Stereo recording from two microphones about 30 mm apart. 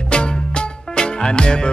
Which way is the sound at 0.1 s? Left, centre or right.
Left.